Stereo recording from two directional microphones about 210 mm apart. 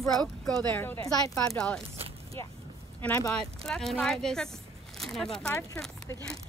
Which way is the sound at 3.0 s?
10° left (ahead or behind).